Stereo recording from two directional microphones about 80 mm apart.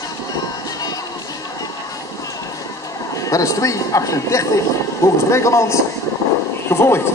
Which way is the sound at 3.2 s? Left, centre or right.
Left.